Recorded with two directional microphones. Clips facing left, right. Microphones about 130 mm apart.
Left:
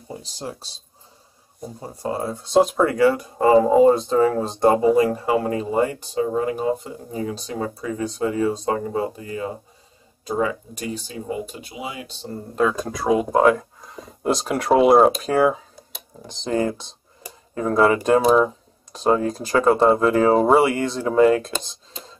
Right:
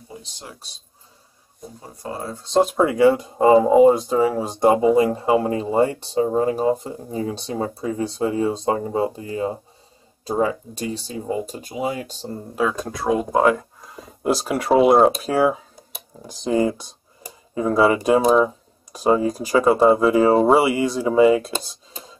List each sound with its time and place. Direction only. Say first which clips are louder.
0.2 s speech: left 7 dB; 35° left (ahead or behind)
1.8 s speech: left 5 dB; 30° left (ahead or behind)
2.1 s speech: left 2 dB; 10° left (ahead or behind)
2.8 s speech: right 2 dB; 15° right (ahead or behind)
4.9 s speech: right 1 dB; 25° right (ahead or behind); by 12.3 s 45° right (ahead or behind)
12.5 s speech: left 2 dB; centre (ahead or behind)
21.6 s a sound: even; 5° right (ahead or behind)